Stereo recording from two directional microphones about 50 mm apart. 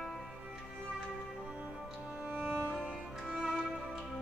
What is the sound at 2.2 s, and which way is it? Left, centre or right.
Music, right.